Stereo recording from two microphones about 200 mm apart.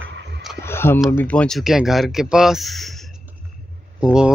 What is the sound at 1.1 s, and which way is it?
Speech, 5° left (ahead or behind).